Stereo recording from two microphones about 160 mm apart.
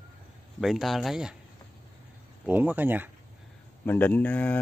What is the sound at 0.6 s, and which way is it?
Speech, centre (ahead or behind).